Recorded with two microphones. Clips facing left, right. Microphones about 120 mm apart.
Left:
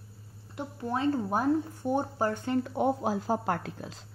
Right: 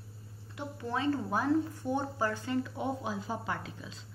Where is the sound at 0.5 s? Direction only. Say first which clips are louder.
Left 3 dB; 40° left (ahead or behind).